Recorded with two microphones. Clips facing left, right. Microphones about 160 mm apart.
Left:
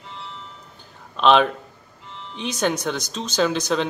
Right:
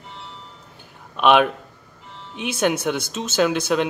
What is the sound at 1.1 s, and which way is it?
Speech, 10° right (ahead or behind).